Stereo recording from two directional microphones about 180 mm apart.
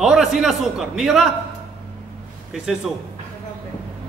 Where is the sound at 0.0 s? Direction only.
Centre (ahead or behind).